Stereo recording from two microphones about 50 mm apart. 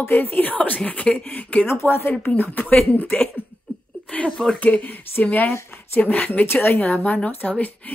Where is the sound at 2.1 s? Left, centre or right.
Left.